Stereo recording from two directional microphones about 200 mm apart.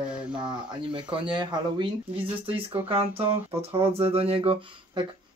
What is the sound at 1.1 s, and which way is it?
Speech, 25° right (ahead or behind).